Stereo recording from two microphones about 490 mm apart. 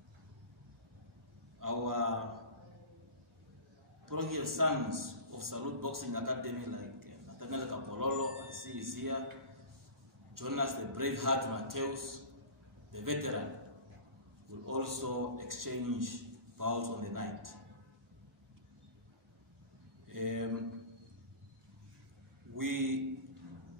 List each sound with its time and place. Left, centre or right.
1.6 s a sound: right
4.1 s a man's voice: right
10.3 s a man's voice: right
14.7 s a man's voice: right
20.1 s speech: right
22.6 s a man's voice: right